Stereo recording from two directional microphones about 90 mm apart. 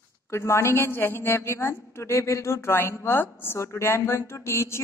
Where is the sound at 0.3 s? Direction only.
30° left (ahead or behind).